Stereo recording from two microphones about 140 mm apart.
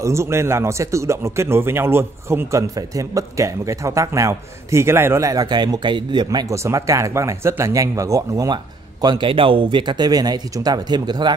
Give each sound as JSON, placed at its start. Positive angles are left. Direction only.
{"t": 0.0, "sound": "speech", "side_deg": -20}
{"t": 6.5, "sound": "speech", "side_deg": -20}
{"t": 9.0, "sound": "speech", "side_deg": -35}